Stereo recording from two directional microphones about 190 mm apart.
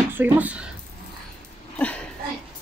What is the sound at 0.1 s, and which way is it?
Speech, 10° right (ahead or behind).